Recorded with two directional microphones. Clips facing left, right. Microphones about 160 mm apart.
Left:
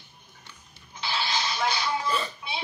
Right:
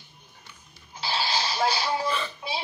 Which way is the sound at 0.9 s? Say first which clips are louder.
Right 1 dB; 35° right (ahead or behind).